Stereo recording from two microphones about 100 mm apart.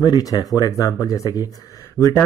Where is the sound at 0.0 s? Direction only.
40° left (ahead or behind).